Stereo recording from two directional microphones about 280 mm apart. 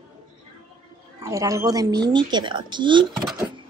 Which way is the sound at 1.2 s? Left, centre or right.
Centre.